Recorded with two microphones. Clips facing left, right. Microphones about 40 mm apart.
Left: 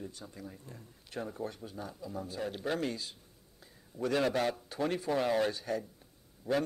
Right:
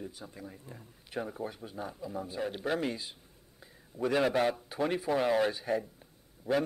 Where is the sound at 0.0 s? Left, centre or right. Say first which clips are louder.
Right 1 dB; centre.